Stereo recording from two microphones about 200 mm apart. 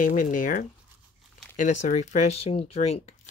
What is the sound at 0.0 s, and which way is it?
Speech, 40° left (ahead or behind).